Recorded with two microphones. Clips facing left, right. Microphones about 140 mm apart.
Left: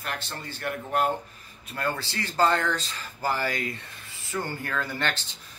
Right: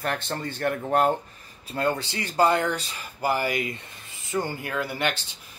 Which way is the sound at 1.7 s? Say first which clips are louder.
Right 5 dB; 20° right (ahead or behind).